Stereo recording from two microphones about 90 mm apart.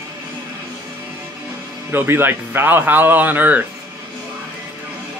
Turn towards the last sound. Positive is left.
turn(degrees=-20)  # may be behind; listen again after turning